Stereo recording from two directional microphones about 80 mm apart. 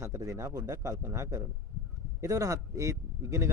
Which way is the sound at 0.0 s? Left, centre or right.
Right.